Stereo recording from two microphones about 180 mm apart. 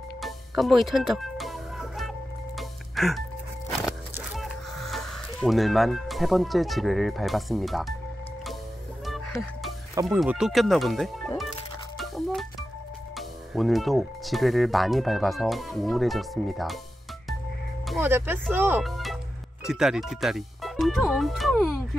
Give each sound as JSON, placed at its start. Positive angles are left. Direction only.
{"t": 0.2, "sound": "music", "side_deg": 0}
{"t": 9.0, "sound": "music", "side_deg": 0}
{"t": 10.1, "sound": "speech", "side_deg": -5}
{"t": 12.0, "sound": "music", "side_deg": 0}
{"t": 13.1, "sound": "speech", "side_deg": 0}
{"t": 18.0, "sound": "speech", "side_deg": -10}
{"t": 18.8, "sound": "music", "side_deg": 0}
{"t": 19.6, "sound": "speech", "side_deg": -5}